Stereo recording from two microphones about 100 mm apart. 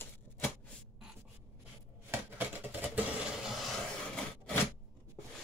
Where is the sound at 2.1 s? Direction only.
20° right (ahead or behind).